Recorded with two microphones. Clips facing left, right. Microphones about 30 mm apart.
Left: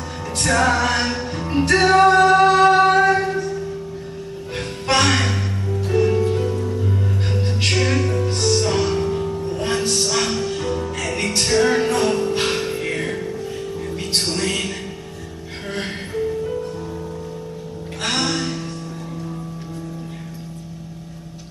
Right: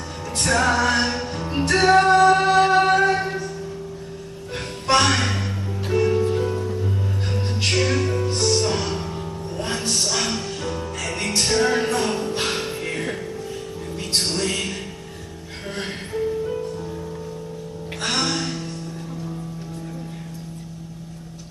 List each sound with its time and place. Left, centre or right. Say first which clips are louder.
0.6 s music: left 1 dB; centre
4.8 s music: left 1 dB; centre
7.7 s music: even; centre
18.1 s music: left 2 dB; centre